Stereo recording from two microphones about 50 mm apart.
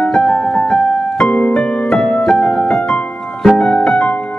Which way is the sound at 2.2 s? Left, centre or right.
Centre.